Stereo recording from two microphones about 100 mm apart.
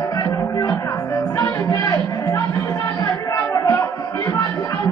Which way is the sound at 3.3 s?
35° left (ahead or behind).